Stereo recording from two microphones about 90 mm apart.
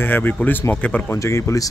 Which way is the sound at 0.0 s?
20° left (ahead or behind).